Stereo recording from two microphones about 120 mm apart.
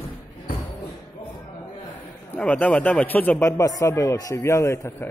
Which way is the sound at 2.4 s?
10° left (ahead or behind).